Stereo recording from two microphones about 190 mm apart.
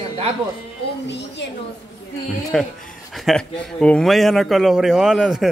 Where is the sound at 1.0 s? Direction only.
65° left (ahead or behind).